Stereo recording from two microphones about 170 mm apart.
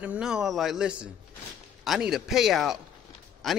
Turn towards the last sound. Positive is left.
turn(degrees=0)  # may be behind; listen again after turning